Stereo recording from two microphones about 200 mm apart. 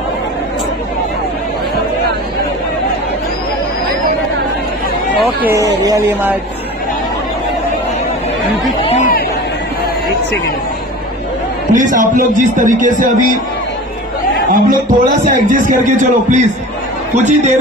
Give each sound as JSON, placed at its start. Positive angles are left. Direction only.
{"t": 5.1, "sound": "speech", "side_deg": 0}
{"t": 5.8, "sound": "a sound", "side_deg": -15}
{"t": 11.7, "sound": "speech", "side_deg": -40}
{"t": 14.5, "sound": "a man's voice", "side_deg": -45}